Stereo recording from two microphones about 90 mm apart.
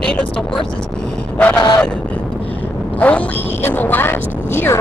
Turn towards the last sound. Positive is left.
turn(degrees=25)  # may be behind; listen again after turning